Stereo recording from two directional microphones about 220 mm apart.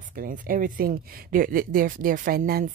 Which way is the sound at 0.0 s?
40° right (ahead or behind).